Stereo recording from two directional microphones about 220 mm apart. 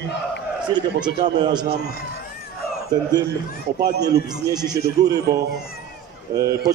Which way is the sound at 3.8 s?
15° right (ahead or behind).